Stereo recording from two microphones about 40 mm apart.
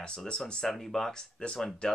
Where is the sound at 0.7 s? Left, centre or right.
Centre.